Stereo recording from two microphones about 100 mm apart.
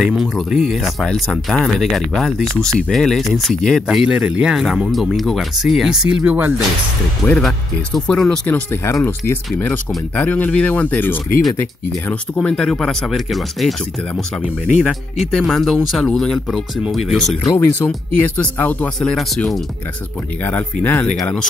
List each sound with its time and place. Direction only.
0.0 s speech: centre (ahead or behind)
7.3 s speech: 5° left (ahead or behind)
8.5 s speech: 20° left (ahead or behind)
12.4 s speech: 5° left (ahead or behind)
17.6 s speech: 25° left (ahead or behind)
18.9 s speech: 5° left (ahead or behind)
20.4 s speech: 20° left (ahead or behind)
21.2 s speech: 5° left (ahead or behind)